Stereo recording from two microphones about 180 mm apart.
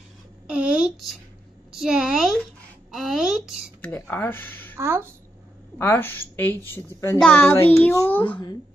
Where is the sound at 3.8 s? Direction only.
10° left (ahead or behind).